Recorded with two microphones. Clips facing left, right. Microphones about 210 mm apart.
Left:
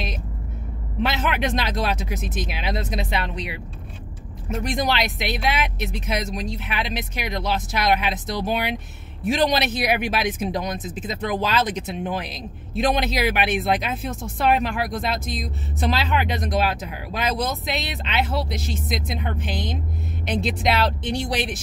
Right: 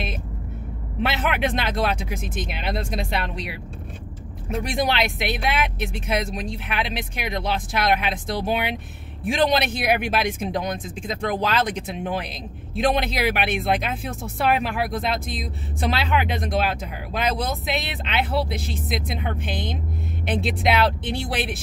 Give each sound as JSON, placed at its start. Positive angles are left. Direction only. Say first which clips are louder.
{"t": 1.0, "sound": "speech", "louder": "even", "side_deg": 0}
{"t": 9.9, "sound": "speech", "louder": "right 1 dB", "side_deg": -55}
{"t": 10.4, "sound": "speech", "louder": "even", "side_deg": 0}